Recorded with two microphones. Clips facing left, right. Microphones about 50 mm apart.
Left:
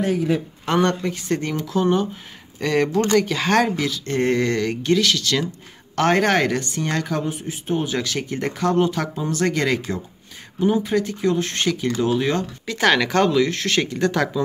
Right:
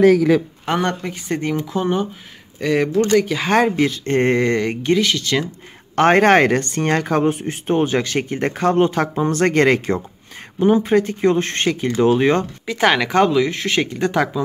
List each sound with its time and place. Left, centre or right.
0.0 s a man's voice: right
0.7 s speech: centre
2.6 s speech: centre
3.7 s speech: right
12.6 s speech: centre